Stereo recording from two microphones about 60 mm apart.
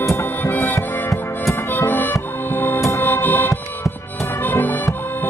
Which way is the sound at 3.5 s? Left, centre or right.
Left.